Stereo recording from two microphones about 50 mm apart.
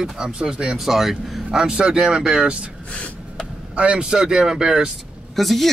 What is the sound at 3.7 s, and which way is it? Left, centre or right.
Speech, right.